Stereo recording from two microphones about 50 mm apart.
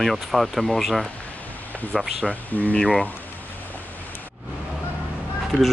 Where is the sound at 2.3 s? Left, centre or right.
Left.